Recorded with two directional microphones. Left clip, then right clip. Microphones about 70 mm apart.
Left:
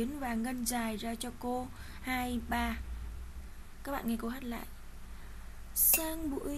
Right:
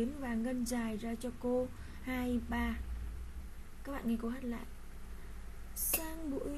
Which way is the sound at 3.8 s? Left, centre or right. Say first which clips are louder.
Left 3 dB; left.